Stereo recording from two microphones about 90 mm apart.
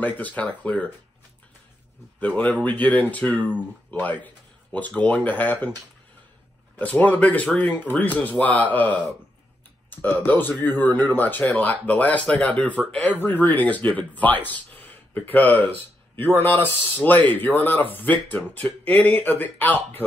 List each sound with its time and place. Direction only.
0.0 s speech: 15° left (ahead or behind)
2.1 s speech: 15° left (ahead or behind)
4.7 s speech: 15° left (ahead or behind)
6.8 s speech: 20° left (ahead or behind)